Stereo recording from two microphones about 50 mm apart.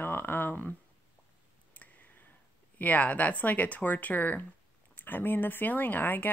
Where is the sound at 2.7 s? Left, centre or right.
Left.